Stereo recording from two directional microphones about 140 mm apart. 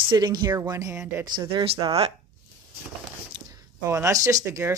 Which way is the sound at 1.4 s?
35° right (ahead or behind).